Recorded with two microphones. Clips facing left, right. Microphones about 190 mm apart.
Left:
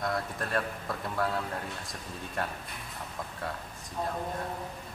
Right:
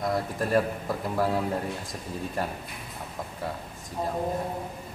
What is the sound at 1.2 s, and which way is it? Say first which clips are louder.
Speech: right 6 dB; 25° right (ahead or behind).